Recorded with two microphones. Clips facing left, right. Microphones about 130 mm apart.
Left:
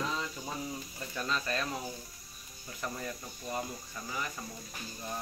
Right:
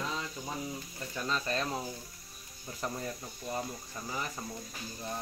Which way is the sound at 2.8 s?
30° right (ahead or behind).